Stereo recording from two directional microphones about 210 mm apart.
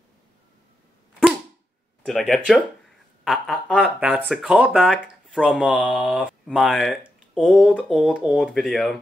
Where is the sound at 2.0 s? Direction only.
Centre (ahead or behind).